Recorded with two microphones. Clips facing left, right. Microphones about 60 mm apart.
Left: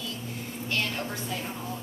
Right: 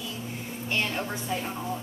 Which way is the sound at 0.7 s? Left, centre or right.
Right.